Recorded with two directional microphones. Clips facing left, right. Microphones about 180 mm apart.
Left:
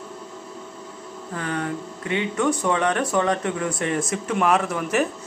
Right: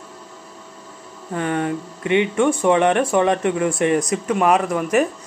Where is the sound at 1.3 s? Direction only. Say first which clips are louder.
Right 6 dB; 20° right (ahead or behind).